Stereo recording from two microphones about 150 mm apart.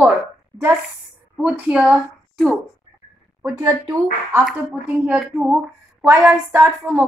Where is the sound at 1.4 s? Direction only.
5° right (ahead or behind).